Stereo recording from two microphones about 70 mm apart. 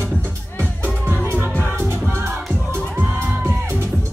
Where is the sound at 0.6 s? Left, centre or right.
Right.